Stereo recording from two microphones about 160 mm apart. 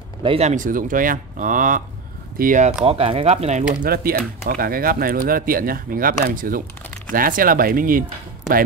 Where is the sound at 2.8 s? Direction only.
40° right (ahead or behind).